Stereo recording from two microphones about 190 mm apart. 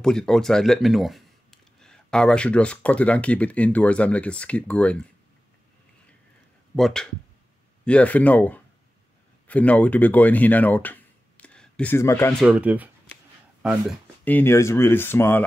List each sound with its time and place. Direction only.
0.0 s speech: 5° left (ahead or behind)
6.7 s speech: centre (ahead or behind)
12.4 s speech: 5° right (ahead or behind)
14.2 s speech: 10° left (ahead or behind)